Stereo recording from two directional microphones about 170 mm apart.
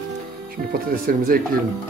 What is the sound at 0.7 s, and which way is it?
Speech, 55° right (ahead or behind).